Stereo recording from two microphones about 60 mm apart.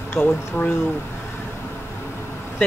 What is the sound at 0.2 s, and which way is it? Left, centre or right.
Speech, centre.